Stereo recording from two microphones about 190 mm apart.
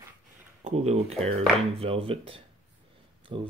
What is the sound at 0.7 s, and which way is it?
Speech, 35° right (ahead or behind).